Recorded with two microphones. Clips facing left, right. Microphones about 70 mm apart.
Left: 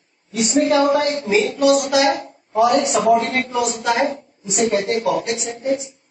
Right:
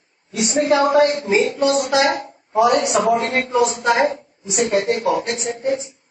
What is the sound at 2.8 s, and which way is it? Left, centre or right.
Speech, centre.